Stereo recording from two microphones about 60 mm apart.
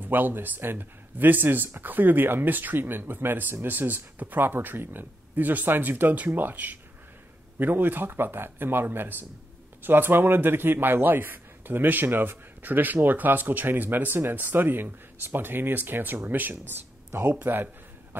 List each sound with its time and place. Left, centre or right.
0.0 s a man's voice: right